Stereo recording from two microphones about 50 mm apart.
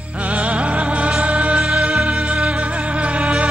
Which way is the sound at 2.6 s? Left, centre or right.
Right.